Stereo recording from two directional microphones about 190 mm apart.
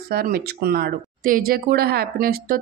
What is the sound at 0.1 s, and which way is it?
Speech, 50° right (ahead or behind).